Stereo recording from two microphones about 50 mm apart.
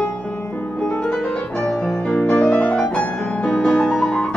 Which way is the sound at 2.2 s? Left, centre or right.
Left.